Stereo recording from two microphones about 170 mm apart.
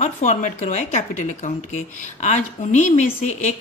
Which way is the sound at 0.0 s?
45° left (ahead or behind).